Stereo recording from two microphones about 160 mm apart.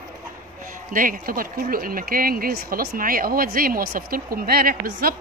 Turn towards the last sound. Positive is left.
turn(degrees=-60)  # may be behind; listen again after turning